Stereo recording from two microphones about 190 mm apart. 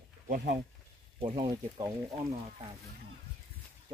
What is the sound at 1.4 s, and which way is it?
Speech, 20° right (ahead or behind).